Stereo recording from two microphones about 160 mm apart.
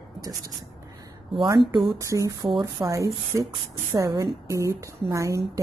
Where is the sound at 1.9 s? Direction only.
20° right (ahead or behind).